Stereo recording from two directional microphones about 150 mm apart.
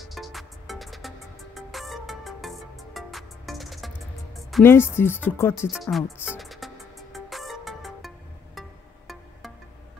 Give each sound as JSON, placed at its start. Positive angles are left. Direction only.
{"t": 0.1, "sound": "music", "side_deg": 0}
{"t": 4.5, "sound": "speech", "side_deg": 0}
{"t": 4.9, "sound": "speech", "side_deg": 15}
{"t": 5.7, "sound": "music", "side_deg": 0}